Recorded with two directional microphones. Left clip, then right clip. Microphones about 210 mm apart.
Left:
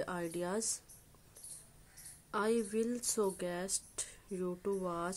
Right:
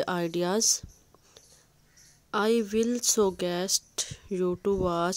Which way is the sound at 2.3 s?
35° right (ahead or behind).